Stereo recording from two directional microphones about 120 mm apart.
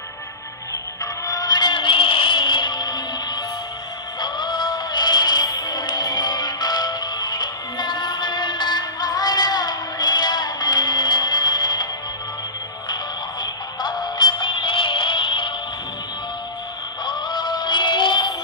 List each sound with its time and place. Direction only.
1.2 s music: 30° left (ahead or behind)
4.2 s music: 40° left (ahead or behind)
13.4 s synthetic singing: 35° left (ahead or behind)
17.0 s synthetic singing: 40° left (ahead or behind)